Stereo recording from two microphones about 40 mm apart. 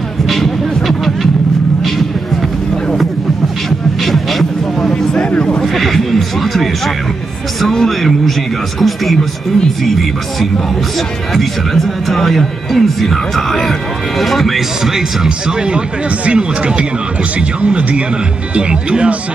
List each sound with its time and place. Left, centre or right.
0.3 s music: centre
4.0 s a sound: centre
4.9 s music: left
5.6 s music: centre
7.6 s speech: centre
11.3 s speech: centre
15.2 s speech: right